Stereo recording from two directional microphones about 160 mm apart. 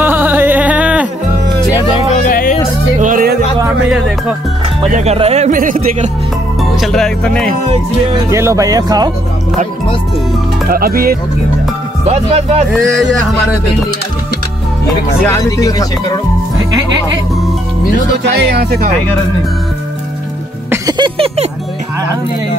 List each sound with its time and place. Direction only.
0.0 s music: 10° right (ahead or behind)
2.2 s music: 60° left (ahead or behind)
3.0 s music: 60° right (ahead or behind)
4.9 s speech: 40° right (ahead or behind); by 6.0 s 55° right (ahead or behind)
6.6 s speech: centre (ahead or behind)
8.3 s speech: 20° right (ahead or behind)
10.7 s speech: 65° right (ahead or behind)
12.1 s speech: 40° right (ahead or behind)
15.2 s speech: 20° left (ahead or behind)
18.2 s speech: 90° right
21.0 s music: 35° right (ahead or behind)